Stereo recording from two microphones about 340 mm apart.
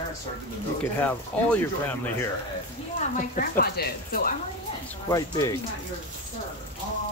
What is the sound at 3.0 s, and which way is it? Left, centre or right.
Speech, left.